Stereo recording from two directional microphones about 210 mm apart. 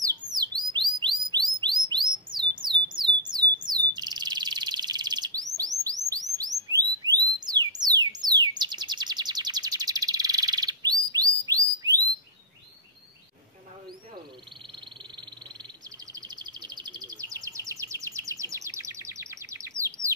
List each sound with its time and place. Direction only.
0.3 s bird: 20° right (ahead or behind)
16.1 s bird: 20° right (ahead or behind)